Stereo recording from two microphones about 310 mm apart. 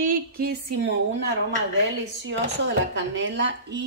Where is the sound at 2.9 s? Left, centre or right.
Right.